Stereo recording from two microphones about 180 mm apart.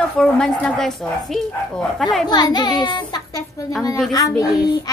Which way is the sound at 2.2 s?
25° left (ahead or behind).